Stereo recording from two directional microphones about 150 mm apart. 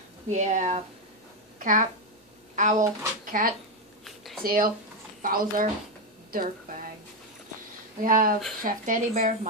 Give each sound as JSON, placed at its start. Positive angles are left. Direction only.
{"t": 0.3, "sound": "a woman's voice", "side_deg": -55}
{"t": 4.0, "sound": "a sound", "side_deg": 0}
{"t": 4.4, "sound": "speech", "side_deg": -75}
{"t": 8.0, "sound": "speech", "side_deg": -65}